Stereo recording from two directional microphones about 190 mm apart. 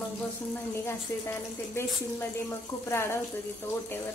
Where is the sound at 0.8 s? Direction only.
15° left (ahead or behind).